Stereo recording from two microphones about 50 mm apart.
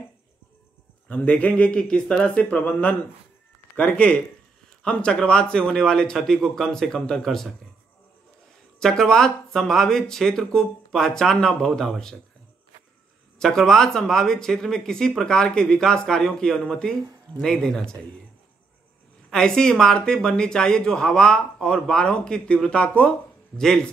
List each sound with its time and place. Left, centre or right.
1.0 s speech: left
3.7 s speech: left
7.2 s a man's voice: centre
8.7 s speech: centre
13.4 s speech: centre
19.3 s speech: centre
23.6 s speech: centre